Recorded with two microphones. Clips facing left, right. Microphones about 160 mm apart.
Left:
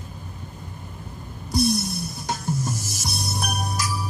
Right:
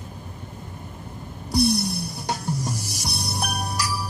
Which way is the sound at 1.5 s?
65° right (ahead or behind).